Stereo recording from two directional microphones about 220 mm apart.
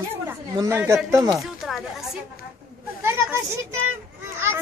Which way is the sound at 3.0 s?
10° right (ahead or behind).